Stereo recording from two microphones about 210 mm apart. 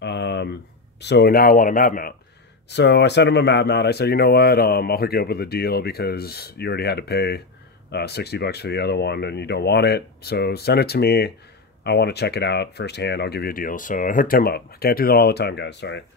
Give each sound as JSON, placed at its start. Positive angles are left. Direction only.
{"t": 0.0, "sound": "a sound", "side_deg": 55}
{"t": 1.0, "sound": "speech", "side_deg": 50}
{"t": 2.7, "sound": "speech", "side_deg": 55}